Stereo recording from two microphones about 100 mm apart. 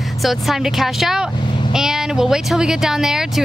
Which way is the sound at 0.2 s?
Centre (ahead or behind).